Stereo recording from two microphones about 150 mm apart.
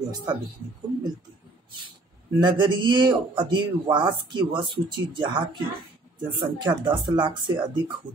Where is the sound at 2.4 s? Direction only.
30° right (ahead or behind).